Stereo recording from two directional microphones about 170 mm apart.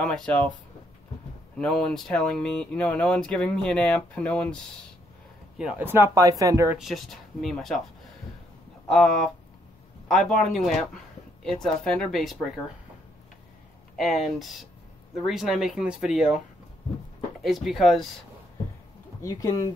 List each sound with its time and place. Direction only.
0.0 s speech: 5° left (ahead or behind)
1.6 s speech: 5° left (ahead or behind)
5.6 s speech: 5° right (ahead or behind)
6.8 s speech: centre (ahead or behind)
8.8 s speech: 5° left (ahead or behind)
13.9 s speech: centre (ahead or behind)
17.4 s speech: centre (ahead or behind)
19.2 s speech: 20° left (ahead or behind)